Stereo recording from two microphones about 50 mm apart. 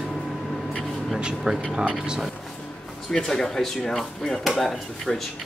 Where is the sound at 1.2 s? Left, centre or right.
Centre.